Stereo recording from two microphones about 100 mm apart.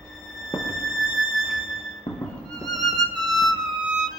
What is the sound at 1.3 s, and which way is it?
Music, centre (ahead or behind).